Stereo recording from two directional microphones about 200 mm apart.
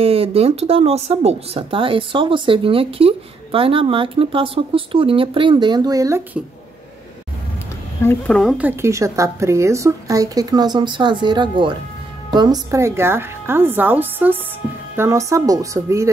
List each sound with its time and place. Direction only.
0.0 s speech: 30° right (ahead or behind); by 6.4 s 15° right (ahead or behind)
8.0 s speech: 10° left (ahead or behind); by 16.1 s 15° right (ahead or behind)